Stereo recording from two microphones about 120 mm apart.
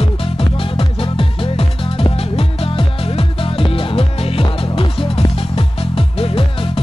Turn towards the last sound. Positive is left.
turn(degrees=50)  # may be behind; listen again after turning